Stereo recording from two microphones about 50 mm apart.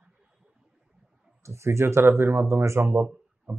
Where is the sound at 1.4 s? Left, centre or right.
Right.